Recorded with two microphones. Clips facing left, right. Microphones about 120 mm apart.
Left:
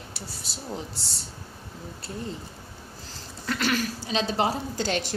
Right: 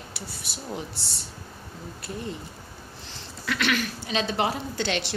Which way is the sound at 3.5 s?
35° left (ahead or behind).